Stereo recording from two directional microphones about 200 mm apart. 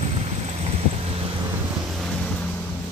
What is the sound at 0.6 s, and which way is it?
Vehicle, 30° right (ahead or behind).